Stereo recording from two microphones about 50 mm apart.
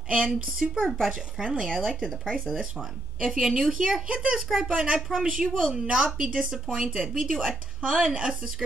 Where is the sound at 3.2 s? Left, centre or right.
Centre.